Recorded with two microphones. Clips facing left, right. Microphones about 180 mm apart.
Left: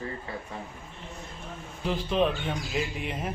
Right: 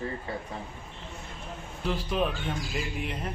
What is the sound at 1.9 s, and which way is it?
Speech, 5° right (ahead or behind).